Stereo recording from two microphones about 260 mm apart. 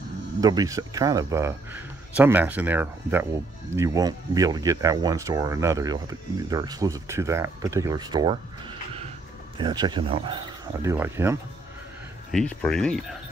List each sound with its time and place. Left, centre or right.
0.4 s speech: centre
12.3 s speech: centre